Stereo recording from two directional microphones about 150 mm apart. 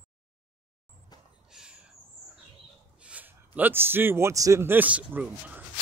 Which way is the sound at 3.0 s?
10° right (ahead or behind).